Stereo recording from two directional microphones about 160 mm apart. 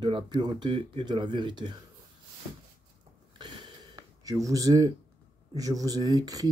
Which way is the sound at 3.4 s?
30° right (ahead or behind).